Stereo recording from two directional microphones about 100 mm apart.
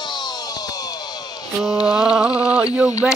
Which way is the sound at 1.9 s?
10° right (ahead or behind).